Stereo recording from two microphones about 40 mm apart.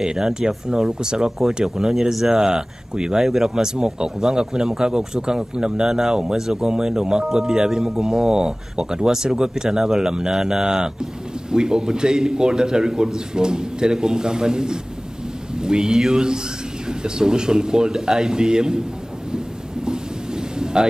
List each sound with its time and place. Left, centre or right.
0.0 s a man's voice: centre
19.3 s thunder: centre